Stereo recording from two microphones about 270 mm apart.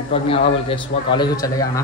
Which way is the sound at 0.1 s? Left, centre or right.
Left.